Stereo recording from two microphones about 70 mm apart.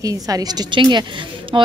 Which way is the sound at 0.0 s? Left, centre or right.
Right.